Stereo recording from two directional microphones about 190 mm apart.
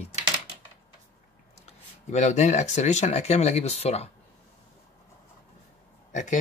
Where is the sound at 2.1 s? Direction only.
40° left (ahead or behind).